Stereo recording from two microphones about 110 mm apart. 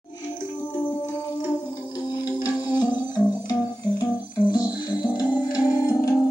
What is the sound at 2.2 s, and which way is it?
Music, 40° left (ahead or behind).